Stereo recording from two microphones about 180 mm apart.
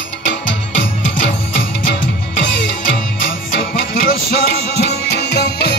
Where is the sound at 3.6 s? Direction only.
50° left (ahead or behind); by 5.7 s 70° left (ahead or behind).